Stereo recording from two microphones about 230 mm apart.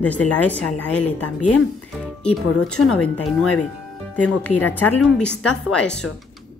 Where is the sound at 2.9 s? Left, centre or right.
Left.